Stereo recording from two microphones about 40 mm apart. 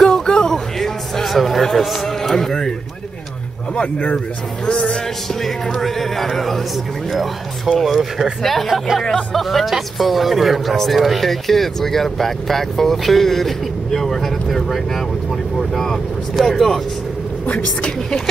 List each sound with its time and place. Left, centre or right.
0.0 s a sound: centre
3.7 s speech: left
5.3 s speech: centre
8.4 s speech: centre